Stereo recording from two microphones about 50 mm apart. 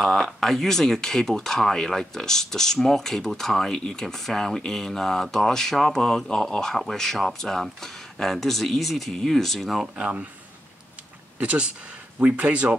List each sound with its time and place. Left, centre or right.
0.0 s speech: centre
11.3 s speech: right